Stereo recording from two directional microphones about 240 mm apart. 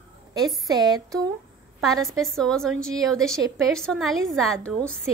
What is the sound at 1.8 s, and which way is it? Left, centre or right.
A woman's voice, centre.